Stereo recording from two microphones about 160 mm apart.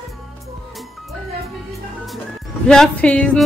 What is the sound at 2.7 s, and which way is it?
Speech, 5° left (ahead or behind).